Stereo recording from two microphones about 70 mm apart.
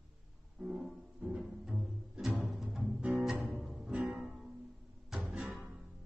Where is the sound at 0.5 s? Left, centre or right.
Centre.